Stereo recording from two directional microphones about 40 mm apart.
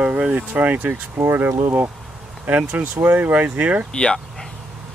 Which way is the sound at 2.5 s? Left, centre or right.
Right.